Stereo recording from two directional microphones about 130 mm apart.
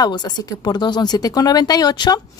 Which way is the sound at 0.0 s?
30° left (ahead or behind).